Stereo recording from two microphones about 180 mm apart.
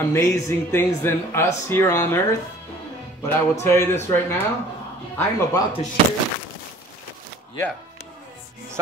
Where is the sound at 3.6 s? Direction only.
15° left (ahead or behind).